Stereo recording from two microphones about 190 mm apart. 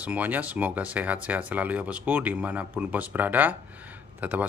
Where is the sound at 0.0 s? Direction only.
10° right (ahead or behind).